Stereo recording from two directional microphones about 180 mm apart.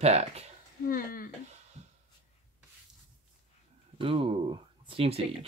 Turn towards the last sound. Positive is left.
turn(degrees=-30)  # may be behind; listen again after turning